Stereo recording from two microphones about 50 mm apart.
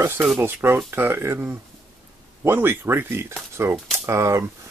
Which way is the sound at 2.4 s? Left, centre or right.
Right.